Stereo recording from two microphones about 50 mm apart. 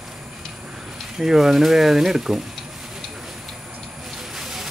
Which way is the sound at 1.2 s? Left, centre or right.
Centre.